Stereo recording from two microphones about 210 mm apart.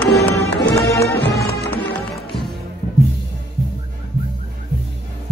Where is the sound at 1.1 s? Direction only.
50° left (ahead or behind).